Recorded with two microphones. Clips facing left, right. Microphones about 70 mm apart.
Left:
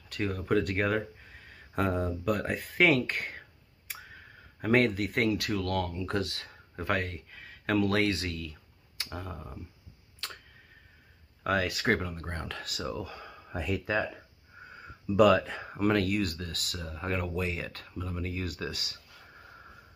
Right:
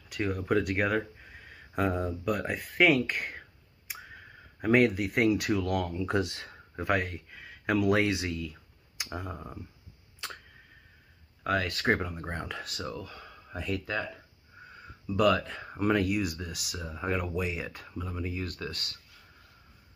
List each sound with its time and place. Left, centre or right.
0.1 s speech: centre
5.3 s speech: centre
10.2 s a sound: centre
11.4 s speech: centre
11.9 s speech: centre
12.6 s speech: centre
15.1 s speech: centre
15.7 s speech: centre